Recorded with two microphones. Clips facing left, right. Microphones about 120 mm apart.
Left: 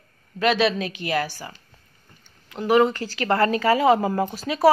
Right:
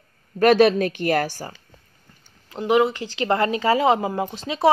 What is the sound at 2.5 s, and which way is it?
A woman's voice, 20° right (ahead or behind).